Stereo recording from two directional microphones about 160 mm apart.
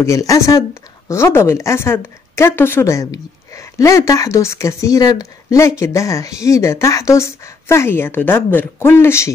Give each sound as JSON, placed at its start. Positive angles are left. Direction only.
{"t": 0.0, "sound": "speech", "side_deg": 20}